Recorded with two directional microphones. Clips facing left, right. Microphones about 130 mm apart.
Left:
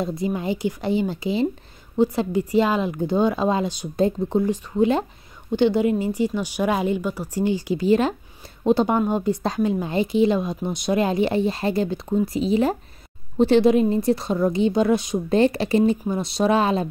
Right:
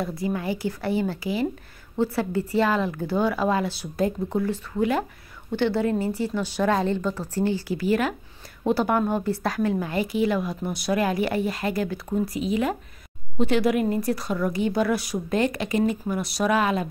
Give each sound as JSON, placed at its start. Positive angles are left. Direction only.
{"t": 0.0, "sound": "a woman's voice", "side_deg": 20}